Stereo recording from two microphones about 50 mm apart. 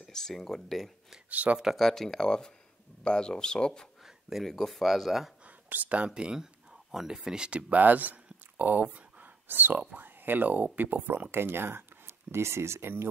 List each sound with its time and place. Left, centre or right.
0.0 s speech: centre
1.3 s speech: right
1.8 s speech: centre
4.0 s a sound: centre
4.5 s speech: centre
5.7 s speech: right
7.7 s speech: right
8.9 s a sound: right
9.9 s speech: right